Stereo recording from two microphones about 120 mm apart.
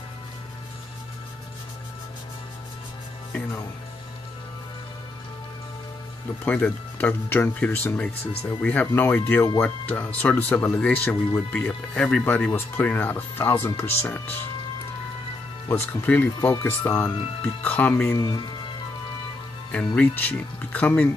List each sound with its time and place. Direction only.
6.4 s speech: 15° left (ahead or behind)
15.7 s speech: 15° left (ahead or behind)
20.0 s speech: 15° left (ahead or behind)